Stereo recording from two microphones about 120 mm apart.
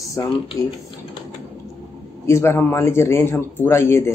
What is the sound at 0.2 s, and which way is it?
Speech, 25° left (ahead or behind).